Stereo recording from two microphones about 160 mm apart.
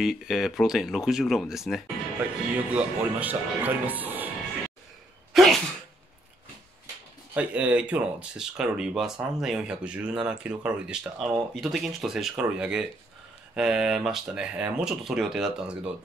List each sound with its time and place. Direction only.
0.0 s speech: centre (ahead or behind)
5.3 s sneeze: centre (ahead or behind)
7.3 s speech: 10° right (ahead or behind)